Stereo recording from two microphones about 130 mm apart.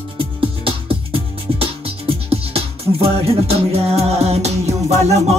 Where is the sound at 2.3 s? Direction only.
50° right (ahead or behind).